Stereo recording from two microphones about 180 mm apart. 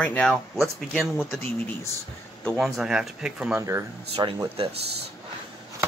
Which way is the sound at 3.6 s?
15° right (ahead or behind).